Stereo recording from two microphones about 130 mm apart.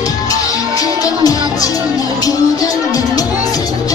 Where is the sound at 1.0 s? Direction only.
30° left (ahead or behind).